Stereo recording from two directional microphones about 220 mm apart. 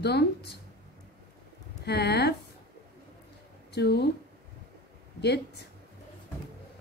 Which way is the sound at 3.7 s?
50° left (ahead or behind).